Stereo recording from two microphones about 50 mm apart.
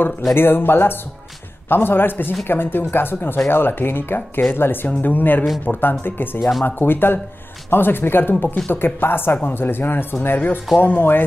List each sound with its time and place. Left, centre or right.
0.3 s speech: left